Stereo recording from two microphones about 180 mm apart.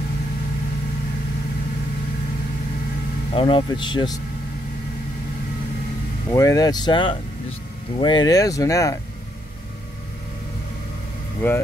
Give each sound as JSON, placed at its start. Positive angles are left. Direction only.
{"t": 3.3, "sound": "speech", "side_deg": 30}
{"t": 6.3, "sound": "speech", "side_deg": 20}
{"t": 11.4, "sound": "speech", "side_deg": 10}